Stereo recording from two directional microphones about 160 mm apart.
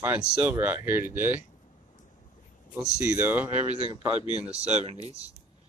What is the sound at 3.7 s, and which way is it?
Speech, 35° right (ahead or behind).